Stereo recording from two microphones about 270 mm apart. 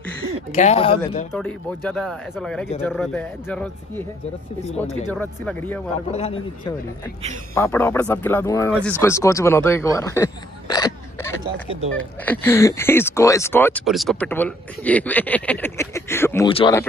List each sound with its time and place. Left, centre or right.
0.5 s speech: left
1.3 s speech: centre
5.1 s speech: centre
6.1 s speech: left
7.5 s speech: centre